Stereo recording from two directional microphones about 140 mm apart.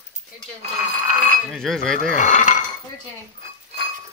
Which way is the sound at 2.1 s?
65° left (ahead or behind).